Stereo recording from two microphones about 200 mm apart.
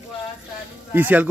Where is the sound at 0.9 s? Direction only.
10° right (ahead or behind).